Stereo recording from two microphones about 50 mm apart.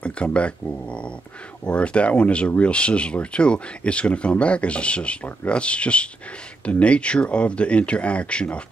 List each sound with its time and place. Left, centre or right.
0.0 s speech: left